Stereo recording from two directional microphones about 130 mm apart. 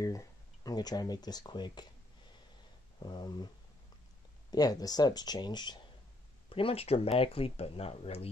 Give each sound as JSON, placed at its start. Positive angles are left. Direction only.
{"t": 0.0, "sound": "speech", "side_deg": 25}
{"t": 3.0, "sound": "speech", "side_deg": 35}
{"t": 4.5, "sound": "speech", "side_deg": 30}
{"t": 6.5, "sound": "speech", "side_deg": 45}